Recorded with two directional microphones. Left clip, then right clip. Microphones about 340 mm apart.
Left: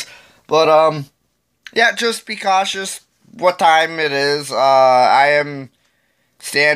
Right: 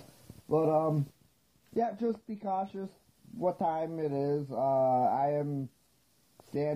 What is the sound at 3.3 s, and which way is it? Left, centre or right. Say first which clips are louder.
Speech: left 19 dB; left.